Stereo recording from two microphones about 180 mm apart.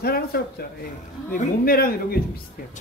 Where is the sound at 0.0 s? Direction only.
60° left (ahead or behind).